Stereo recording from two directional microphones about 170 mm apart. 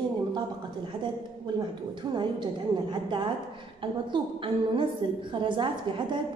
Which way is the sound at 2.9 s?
30° right (ahead or behind).